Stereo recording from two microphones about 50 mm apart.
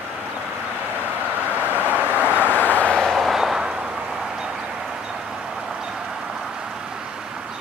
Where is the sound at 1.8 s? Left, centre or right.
Right.